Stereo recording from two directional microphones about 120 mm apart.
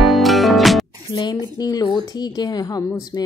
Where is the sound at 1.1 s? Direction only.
30° left (ahead or behind).